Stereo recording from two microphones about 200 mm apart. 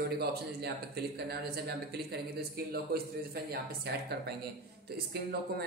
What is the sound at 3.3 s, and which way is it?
Speech, 50° right (ahead or behind).